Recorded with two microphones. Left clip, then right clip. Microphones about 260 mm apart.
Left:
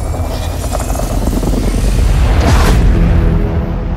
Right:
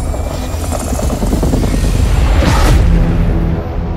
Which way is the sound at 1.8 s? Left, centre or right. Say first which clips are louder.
Even; centre.